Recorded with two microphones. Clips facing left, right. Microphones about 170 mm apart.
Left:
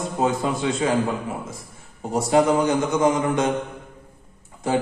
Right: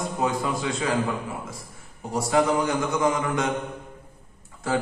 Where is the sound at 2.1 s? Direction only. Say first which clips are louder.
Left 4 dB; 25° left (ahead or behind).